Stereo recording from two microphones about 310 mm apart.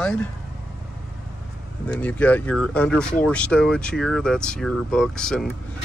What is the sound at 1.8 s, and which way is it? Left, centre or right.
Speech, centre.